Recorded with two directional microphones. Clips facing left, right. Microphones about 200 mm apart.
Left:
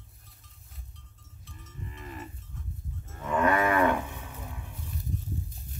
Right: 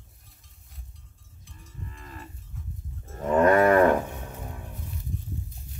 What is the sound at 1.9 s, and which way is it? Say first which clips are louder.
Livestock: left 6 dB; 15° left (ahead or behind).